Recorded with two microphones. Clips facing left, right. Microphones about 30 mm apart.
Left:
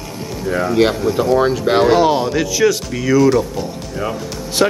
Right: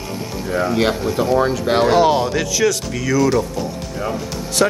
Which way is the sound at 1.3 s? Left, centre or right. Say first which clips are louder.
Left 2 dB; centre.